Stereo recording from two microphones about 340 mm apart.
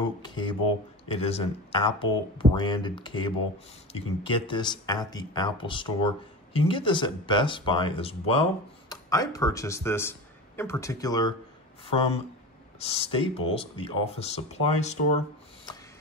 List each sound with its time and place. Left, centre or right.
0.2 s speech: centre
12.7 s speech: centre